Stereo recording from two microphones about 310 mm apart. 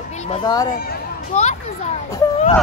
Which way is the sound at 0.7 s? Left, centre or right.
Left.